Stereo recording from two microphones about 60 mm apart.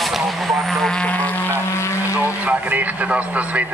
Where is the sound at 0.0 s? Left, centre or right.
Centre; by 1.3 s left.